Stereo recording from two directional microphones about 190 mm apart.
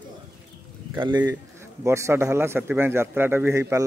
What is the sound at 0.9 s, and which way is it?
Speech, 25° right (ahead or behind).